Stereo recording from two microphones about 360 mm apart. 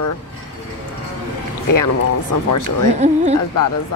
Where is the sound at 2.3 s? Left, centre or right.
Left.